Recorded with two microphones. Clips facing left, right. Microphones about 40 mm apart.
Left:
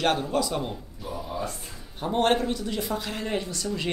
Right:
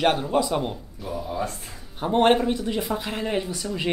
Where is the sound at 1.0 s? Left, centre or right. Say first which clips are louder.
Right 4 dB; centre.